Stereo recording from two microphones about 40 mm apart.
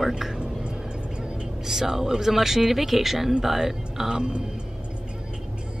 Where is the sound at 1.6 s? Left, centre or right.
Centre.